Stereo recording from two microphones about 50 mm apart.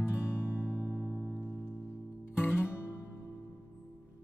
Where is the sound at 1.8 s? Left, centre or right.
Left.